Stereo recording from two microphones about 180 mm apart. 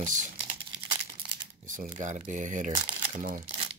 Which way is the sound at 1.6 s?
45° right (ahead or behind).